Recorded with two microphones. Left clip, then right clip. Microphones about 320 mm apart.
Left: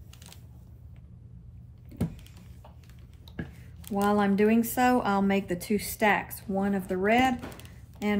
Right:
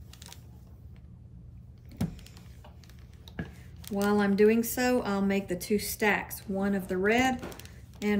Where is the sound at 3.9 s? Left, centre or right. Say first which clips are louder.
Left 1 dB; centre.